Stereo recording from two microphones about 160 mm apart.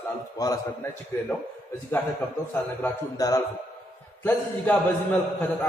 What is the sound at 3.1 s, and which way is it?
Speech, 20° left (ahead or behind).